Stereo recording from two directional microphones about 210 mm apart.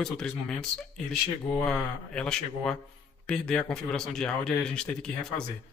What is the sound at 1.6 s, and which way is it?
Speech, 5° left (ahead or behind).